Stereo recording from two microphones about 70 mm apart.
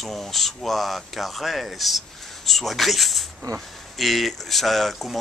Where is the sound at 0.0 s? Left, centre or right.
Centre.